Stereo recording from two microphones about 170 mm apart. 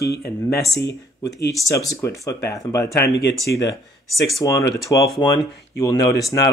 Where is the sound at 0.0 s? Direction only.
70° left (ahead or behind).